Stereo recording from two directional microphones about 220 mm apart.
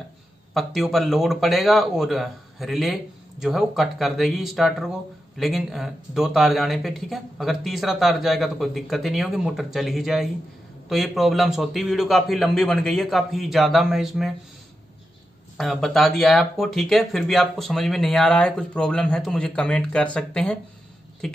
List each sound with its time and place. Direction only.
0.6 s speech: centre (ahead or behind)
15.5 s speech: centre (ahead or behind)